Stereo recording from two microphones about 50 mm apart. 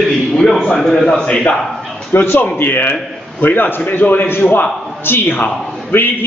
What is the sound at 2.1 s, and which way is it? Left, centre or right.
A man's voice, left.